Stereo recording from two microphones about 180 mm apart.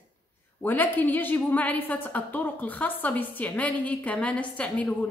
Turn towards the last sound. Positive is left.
turn(degrees=5)  # may be behind; listen again after turning